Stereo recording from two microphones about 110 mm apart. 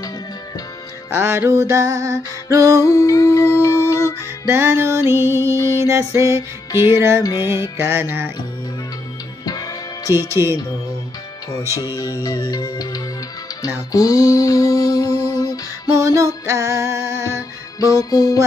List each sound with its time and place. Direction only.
1.1 s music: 20° right (ahead or behind)
2.8 s a sound: 30° left (ahead or behind)
3.6 s music: 25° left (ahead or behind)
4.5 s music: 25° right (ahead or behind)
9.5 s music: 35° left (ahead or behind)
10.4 s music: 25° right (ahead or behind)
11.7 s music: 35° left (ahead or behind)
13.9 s a sound: 30° left (ahead or behind)
15.9 s music: 30° right (ahead or behind)
17.7 s a sound: 30° left (ahead or behind)